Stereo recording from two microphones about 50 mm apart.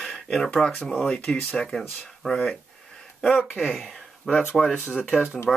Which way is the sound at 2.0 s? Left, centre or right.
Centre.